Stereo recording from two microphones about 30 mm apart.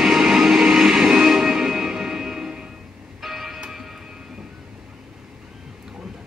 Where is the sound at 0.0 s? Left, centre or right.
Centre.